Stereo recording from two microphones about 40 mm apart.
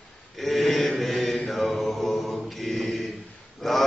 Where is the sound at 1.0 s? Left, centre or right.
Centre.